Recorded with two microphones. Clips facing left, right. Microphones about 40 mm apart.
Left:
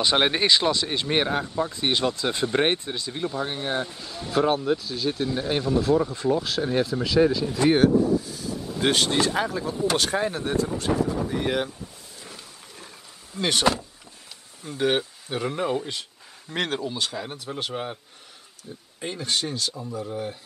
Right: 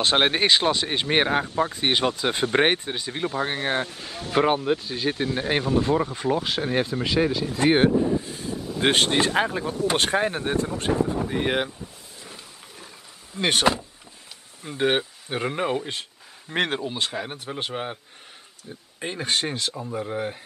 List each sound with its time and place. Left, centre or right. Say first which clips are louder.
0.0 s speech: right 1 dB; right
7.4 s speech: even; right
13.4 s speech: right 1 dB; right
15.9 s a sound: right 1 dB; right
16.8 s speech: right 1 dB; right
18.9 s speech: right 2 dB; right